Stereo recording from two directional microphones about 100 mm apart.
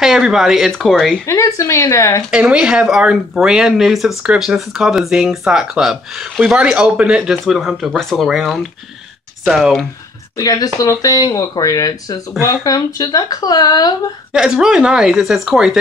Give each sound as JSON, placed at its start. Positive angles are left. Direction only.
{"t": 0.0, "sound": "speech", "side_deg": -5}
{"t": 1.2, "sound": "speech", "side_deg": 30}
{"t": 2.3, "sound": "speech", "side_deg": -10}
{"t": 10.3, "sound": "speech", "side_deg": 40}
{"t": 14.3, "sound": "speech", "side_deg": -5}